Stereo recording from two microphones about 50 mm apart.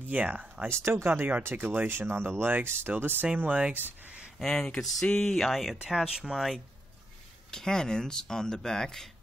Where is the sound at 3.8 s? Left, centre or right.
Right.